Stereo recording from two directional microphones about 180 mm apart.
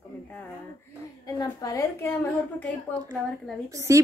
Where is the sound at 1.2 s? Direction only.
20° left (ahead or behind).